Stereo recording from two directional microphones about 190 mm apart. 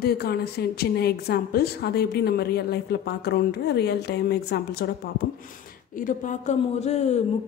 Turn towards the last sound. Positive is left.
turn(degrees=35)  # may be behind; listen again after turning